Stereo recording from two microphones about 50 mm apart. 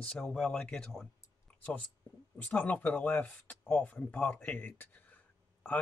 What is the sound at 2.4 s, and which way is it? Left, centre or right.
Speech, left.